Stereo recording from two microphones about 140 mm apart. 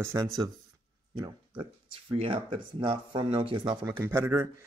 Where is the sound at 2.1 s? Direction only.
40° right (ahead or behind); by 4.4 s 20° right (ahead or behind).